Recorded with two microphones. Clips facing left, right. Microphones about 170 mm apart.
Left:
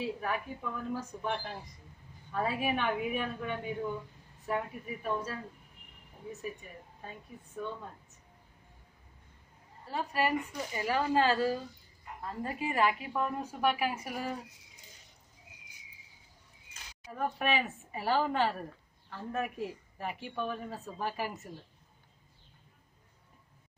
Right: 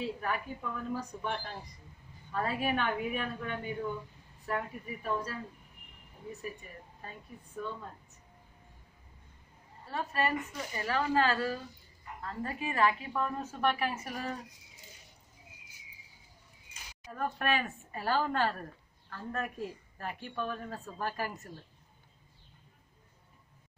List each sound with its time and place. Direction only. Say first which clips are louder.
0.2 s a woman's voice: even; centre (ahead or behind)
9.8 s speech: left 1 dB; 15° left (ahead or behind)
15.5 s a sound: even; 10° left (ahead or behind)
17.1 s speech: left 1 dB; 5° left (ahead or behind)